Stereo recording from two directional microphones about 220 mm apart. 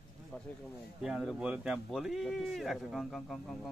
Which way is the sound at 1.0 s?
5° right (ahead or behind).